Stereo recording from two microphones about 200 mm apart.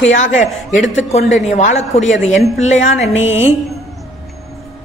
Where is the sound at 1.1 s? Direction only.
35° left (ahead or behind).